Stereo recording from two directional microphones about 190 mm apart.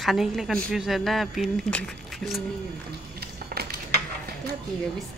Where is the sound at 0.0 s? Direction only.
Centre (ahead or behind).